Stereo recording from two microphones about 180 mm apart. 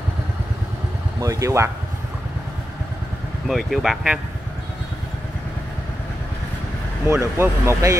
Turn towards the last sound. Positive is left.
turn(degrees=-15)  # may be behind; listen again after turning